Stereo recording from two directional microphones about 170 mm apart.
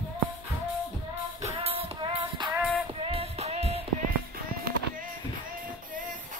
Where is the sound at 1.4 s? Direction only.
35° right (ahead or behind).